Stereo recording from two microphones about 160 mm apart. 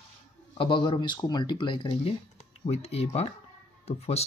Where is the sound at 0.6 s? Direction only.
30° left (ahead or behind).